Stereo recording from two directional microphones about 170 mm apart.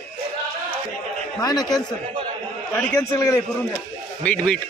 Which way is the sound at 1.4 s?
25° left (ahead or behind).